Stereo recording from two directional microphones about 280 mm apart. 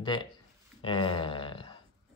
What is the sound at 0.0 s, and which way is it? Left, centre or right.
Speech, centre.